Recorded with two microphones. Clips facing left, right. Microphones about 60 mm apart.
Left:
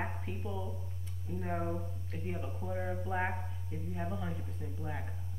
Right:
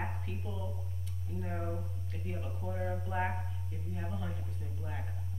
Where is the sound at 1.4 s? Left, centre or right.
Centre.